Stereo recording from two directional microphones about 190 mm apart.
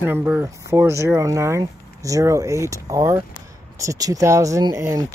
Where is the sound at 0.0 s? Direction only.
10° right (ahead or behind).